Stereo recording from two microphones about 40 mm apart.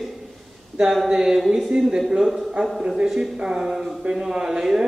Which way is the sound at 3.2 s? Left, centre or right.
Centre.